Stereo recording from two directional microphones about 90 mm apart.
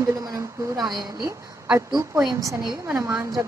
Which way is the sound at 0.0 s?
40° right (ahead or behind).